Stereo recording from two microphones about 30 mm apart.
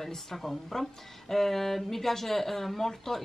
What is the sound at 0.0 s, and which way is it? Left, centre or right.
A woman's voice, centre.